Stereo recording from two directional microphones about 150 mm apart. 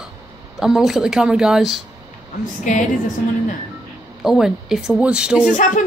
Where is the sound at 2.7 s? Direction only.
55° left (ahead or behind).